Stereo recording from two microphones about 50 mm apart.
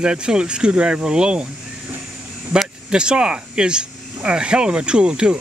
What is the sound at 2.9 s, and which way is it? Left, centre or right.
Speech, centre.